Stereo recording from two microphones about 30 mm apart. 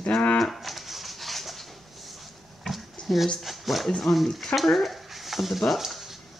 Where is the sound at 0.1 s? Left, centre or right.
Left.